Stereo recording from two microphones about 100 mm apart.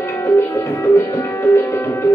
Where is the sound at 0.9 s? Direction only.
25° left (ahead or behind).